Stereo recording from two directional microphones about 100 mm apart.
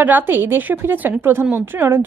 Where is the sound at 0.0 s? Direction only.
20° right (ahead or behind).